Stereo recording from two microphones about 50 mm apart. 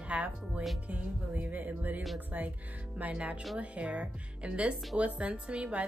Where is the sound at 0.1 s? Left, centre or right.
Right.